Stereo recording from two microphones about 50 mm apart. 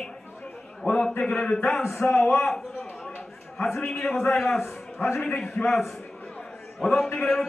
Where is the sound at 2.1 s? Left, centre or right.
Left.